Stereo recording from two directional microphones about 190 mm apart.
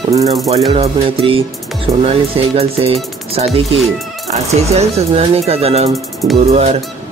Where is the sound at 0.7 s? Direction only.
30° right (ahead or behind).